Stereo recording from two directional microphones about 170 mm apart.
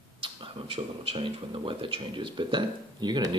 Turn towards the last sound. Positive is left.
turn(degrees=-25)  # may be behind; listen again after turning